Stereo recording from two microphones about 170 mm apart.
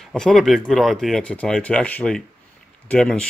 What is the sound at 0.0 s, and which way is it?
Speech, centre (ahead or behind).